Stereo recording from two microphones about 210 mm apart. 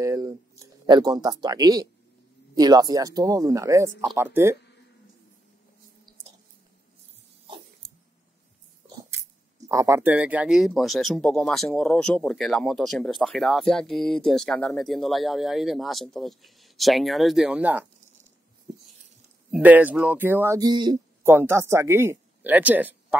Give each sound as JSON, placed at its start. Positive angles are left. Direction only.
{"t": 0.0, "sound": "speech", "side_deg": -15}
{"t": 6.1, "sound": "a sound", "side_deg": -20}
{"t": 9.7, "sound": "speech", "side_deg": -15}
{"t": 19.5, "sound": "speech", "side_deg": -10}